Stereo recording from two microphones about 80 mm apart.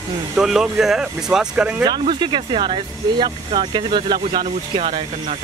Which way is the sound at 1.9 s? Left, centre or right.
Right.